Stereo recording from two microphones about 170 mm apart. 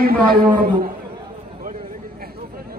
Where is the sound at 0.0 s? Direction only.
60° right (ahead or behind).